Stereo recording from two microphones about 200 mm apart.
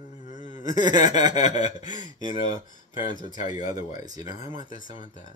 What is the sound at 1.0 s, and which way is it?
Speech, 20° right (ahead or behind).